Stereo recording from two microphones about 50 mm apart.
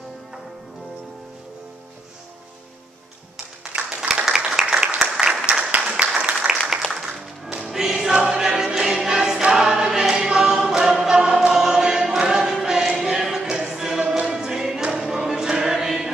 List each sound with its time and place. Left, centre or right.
3.7 s applause: right
4.1 s applause: centre
4.4 s a sound: centre
5.3 s applause: right
7.0 s music: centre
7.6 s choir: centre